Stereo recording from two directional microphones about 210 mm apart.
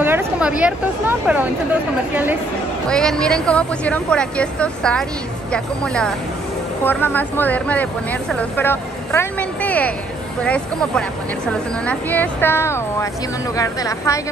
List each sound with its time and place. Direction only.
0.0 s speech: 10° right (ahead or behind)
2.9 s speech: 5° left (ahead or behind)